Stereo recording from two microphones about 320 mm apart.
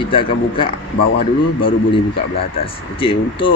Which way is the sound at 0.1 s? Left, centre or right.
Centre.